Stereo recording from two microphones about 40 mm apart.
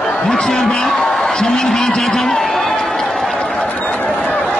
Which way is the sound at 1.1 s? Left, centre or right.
Centre.